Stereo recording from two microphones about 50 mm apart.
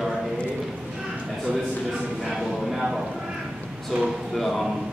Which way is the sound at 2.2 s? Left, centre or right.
Centre.